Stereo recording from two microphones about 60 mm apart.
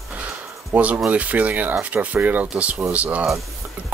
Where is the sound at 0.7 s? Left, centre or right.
Right.